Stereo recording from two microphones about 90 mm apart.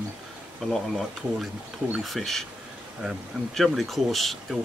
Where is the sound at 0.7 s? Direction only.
Centre (ahead or behind).